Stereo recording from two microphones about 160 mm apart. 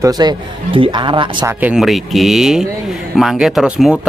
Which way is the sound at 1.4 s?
5° right (ahead or behind).